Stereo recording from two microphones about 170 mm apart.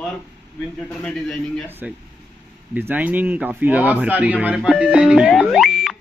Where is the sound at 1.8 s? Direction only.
10° right (ahead or behind).